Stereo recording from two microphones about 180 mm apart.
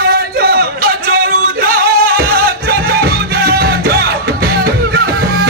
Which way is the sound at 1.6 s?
55° right (ahead or behind).